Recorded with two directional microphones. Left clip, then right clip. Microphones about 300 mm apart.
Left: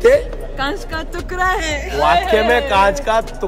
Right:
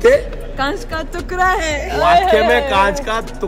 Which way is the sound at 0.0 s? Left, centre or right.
Centre.